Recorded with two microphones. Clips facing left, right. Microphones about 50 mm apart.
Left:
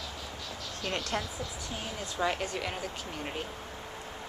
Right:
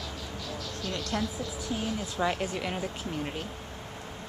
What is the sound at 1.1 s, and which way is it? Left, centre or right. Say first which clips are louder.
Speech: right 5 dB; centre.